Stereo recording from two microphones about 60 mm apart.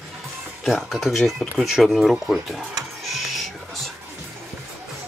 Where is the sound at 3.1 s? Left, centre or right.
Centre.